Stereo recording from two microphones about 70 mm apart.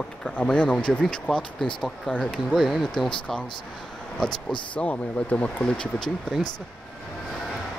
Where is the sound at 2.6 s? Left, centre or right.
Centre.